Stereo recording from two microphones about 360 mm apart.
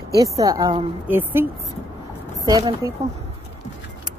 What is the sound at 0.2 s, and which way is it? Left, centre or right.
A woman's voice, centre.